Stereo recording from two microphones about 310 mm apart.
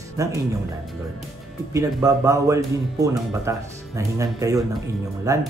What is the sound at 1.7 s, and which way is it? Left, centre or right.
Speech, centre.